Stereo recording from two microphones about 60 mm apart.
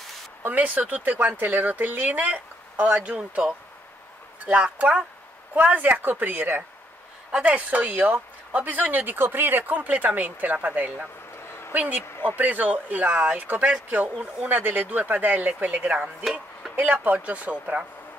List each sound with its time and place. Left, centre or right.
0.4 s speech: right
4.7 s speech: right
7.2 s speech: centre